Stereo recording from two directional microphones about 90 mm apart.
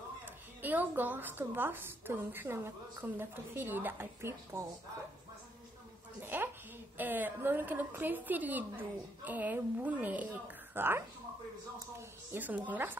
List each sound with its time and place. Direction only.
0.2 s a woman's voice: 20° right (ahead or behind)
6.2 s a sound: 20° right (ahead or behind)
7.0 s a woman's voice: 20° right (ahead or behind)